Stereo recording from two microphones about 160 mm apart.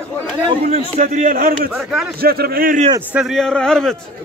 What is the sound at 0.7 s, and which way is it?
A man's voice, 40° right (ahead or behind).